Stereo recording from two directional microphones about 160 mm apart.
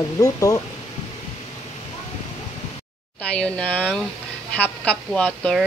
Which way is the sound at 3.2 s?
5° left (ahead or behind).